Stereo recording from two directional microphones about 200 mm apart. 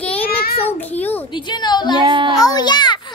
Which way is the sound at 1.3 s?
20° left (ahead or behind).